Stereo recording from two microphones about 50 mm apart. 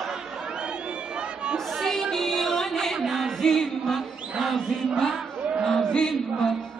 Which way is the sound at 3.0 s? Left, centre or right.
Centre.